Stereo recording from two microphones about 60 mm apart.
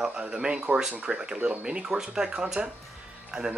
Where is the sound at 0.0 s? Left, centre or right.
Centre.